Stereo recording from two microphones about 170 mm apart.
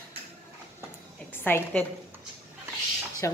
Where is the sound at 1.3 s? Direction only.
10° left (ahead or behind).